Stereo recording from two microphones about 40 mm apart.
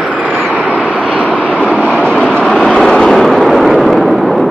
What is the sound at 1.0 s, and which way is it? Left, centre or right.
Vehicle, left.